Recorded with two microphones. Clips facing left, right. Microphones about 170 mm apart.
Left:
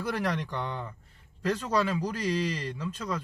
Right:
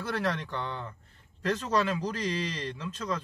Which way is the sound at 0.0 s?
15° left (ahead or behind).